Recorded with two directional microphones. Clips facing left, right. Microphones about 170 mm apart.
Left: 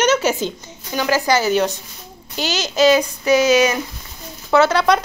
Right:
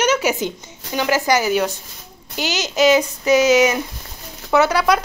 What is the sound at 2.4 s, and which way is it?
Child singing, 15° right (ahead or behind).